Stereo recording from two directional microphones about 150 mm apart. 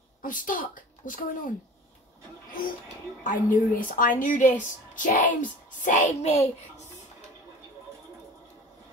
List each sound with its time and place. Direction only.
0.2 s speech: 65° left (ahead or behind)
3.3 s a woman's voice: 65° left (ahead or behind); by 6.5 s 45° left (ahead or behind)